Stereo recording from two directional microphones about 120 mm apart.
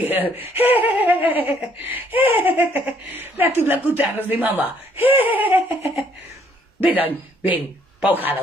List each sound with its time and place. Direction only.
0.0 s speech: 15° right (ahead or behind)
7.4 s a man's voice: 15° right (ahead or behind)